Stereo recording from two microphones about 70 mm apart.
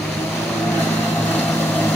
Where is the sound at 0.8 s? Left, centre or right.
Left.